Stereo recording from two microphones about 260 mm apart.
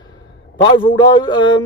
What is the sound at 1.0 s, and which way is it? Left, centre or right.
Speech, centre.